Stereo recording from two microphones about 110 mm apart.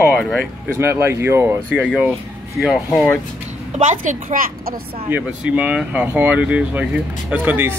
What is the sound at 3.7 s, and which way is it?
Speech, 90° right.